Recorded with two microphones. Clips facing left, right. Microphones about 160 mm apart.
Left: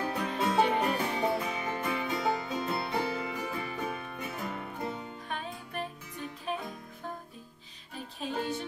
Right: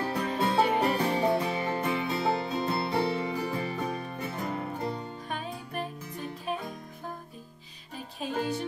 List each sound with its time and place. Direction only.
0.0 s music: 30° right (ahead or behind)
5.3 s music: 5° right (ahead or behind)
8.2 s music: 5° right (ahead or behind)